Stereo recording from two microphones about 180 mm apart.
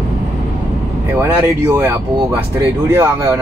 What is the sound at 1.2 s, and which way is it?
Speech, 15° right (ahead or behind).